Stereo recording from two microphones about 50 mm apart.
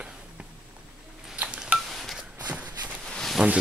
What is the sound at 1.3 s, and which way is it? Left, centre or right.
Telephone dialing, right.